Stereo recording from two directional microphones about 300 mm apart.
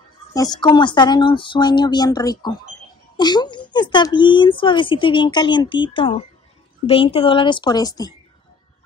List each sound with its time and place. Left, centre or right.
0.3 s speech: centre